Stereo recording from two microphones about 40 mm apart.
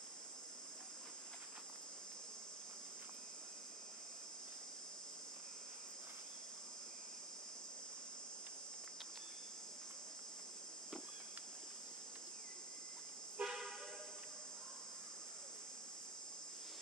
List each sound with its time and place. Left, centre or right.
13.4 s vehicle: right